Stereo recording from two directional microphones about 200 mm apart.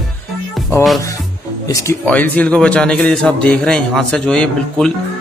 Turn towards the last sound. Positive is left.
turn(degrees=5)  # may be behind; listen again after turning